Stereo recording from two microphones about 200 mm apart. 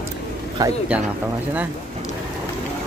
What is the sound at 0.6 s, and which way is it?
Speech, 20° right (ahead or behind).